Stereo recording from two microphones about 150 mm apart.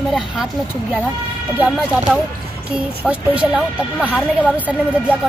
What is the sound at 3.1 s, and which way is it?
Speech, 10° right (ahead or behind).